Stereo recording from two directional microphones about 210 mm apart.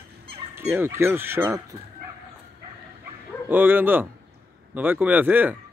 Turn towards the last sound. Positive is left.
turn(degrees=-10)  # may be behind; listen again after turning